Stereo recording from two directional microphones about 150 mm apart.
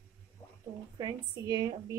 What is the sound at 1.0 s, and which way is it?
Speech, 25° right (ahead or behind).